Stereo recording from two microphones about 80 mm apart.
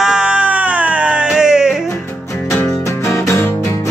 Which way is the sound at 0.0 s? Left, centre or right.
Centre.